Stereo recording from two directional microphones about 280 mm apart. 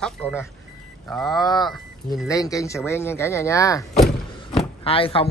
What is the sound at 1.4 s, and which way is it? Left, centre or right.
Speech, centre.